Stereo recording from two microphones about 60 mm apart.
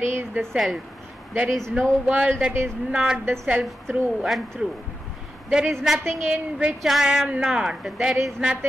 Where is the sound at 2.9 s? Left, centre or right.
Centre.